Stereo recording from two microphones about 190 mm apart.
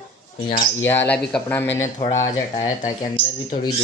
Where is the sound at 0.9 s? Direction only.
10° left (ahead or behind).